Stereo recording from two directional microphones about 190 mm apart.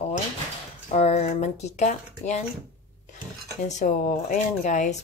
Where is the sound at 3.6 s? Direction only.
40° left (ahead or behind).